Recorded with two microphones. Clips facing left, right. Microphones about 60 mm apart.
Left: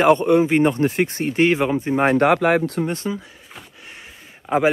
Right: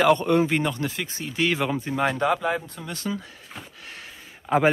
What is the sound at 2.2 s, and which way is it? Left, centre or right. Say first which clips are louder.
Speech: left 7 dB; left.